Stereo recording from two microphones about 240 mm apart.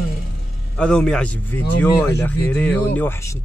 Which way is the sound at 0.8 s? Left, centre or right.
Centre.